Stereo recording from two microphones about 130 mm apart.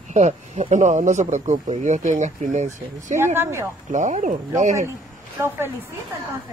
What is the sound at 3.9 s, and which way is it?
Speech, 70° right (ahead or behind).